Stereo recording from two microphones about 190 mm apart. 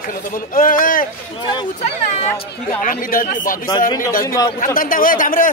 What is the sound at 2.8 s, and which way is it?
Speech, 45° left (ahead or behind).